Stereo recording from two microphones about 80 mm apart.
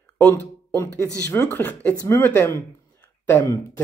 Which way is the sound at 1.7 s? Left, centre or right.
Centre.